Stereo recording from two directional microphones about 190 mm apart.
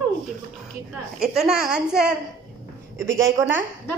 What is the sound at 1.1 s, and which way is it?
A woman's voice, 5° right (ahead or behind).